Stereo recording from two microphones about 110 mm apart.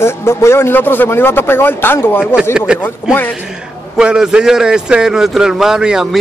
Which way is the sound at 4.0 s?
10° right (ahead or behind).